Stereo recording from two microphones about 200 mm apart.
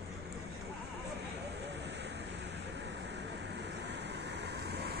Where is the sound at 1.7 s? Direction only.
60° right (ahead or behind).